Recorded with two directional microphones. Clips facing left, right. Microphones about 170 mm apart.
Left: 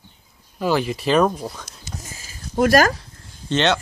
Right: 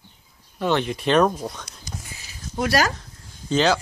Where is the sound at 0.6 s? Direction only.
5° left (ahead or behind).